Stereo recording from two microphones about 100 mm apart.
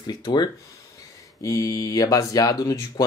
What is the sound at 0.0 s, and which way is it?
Speech, 45° left (ahead or behind).